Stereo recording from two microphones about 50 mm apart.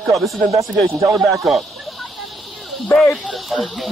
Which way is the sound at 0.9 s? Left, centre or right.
Right.